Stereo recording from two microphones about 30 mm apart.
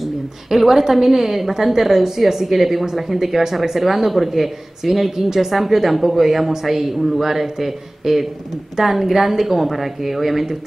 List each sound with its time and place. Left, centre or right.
0.0 s speech: centre